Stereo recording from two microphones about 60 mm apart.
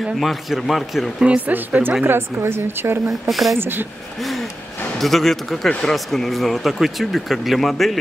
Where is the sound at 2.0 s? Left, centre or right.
Right.